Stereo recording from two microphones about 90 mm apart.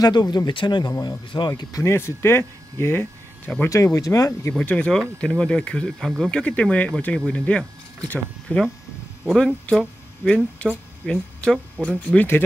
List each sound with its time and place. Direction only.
0.0 s speech: 50° left (ahead or behind)
0.5 s speech: 65° left (ahead or behind)
1.6 s speech: 35° left (ahead or behind)
3.7 s speech: 40° left (ahead or behind)
4.6 s speech: 15° left (ahead or behind)
5.9 s speech: centre (ahead or behind)
6.3 s speech: 10° left (ahead or behind)
9.7 s speech: 10° left (ahead or behind)